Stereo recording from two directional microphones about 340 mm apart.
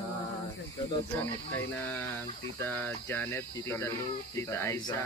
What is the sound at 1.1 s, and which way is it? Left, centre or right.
Speech, centre.